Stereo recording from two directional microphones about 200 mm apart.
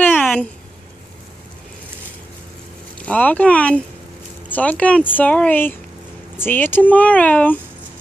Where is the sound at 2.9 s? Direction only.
5° left (ahead or behind).